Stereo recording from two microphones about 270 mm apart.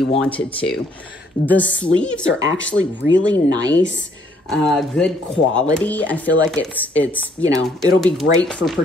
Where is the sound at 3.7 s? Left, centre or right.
Left.